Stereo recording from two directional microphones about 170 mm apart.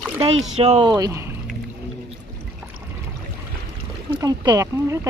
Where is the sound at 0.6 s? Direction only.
35° right (ahead or behind).